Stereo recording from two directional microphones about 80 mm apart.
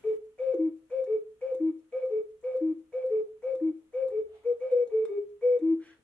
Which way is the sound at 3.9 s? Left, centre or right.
Centre.